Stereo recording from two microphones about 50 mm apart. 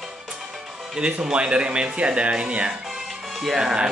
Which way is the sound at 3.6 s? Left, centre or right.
Centre.